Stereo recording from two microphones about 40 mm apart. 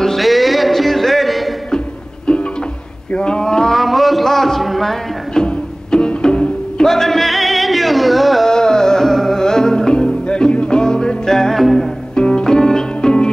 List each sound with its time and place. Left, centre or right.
0.0 s music: centre
3.3 s a sound: centre
3.7 s a sound: centre
5.3 s music: centre
6.9 s music: centre
8.5 s music: centre
11.5 s music: centre
12.2 s music: left